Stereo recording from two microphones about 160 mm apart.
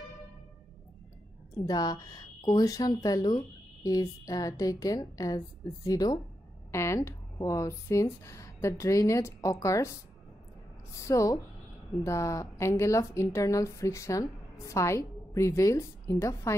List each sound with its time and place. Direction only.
1.7 s a woman's voice: 25° left (ahead or behind)